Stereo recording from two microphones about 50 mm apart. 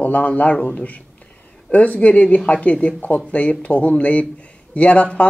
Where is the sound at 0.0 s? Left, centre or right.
Left.